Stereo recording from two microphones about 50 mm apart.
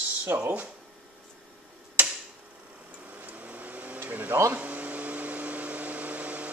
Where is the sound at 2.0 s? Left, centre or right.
Right.